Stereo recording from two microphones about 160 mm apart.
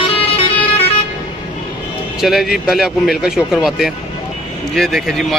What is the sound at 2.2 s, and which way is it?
A man's voice, centre (ahead or behind).